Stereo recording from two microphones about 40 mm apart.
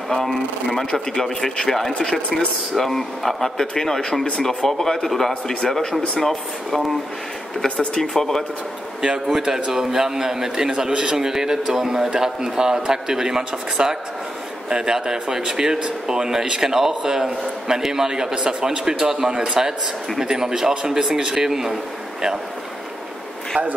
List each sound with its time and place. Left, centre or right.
0.1 s speech: centre
5.3 s speech: left
5.7 s speech: centre
7.6 s speech: left
8.0 s speech: centre
9.4 s a man's voice: centre
18.5 s speech: right
18.9 s a man's voice: centre